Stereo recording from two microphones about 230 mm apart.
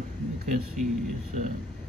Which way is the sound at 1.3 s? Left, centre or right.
Right.